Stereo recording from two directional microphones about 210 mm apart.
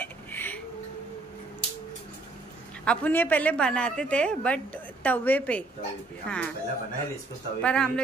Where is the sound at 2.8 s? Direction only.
5° left (ahead or behind).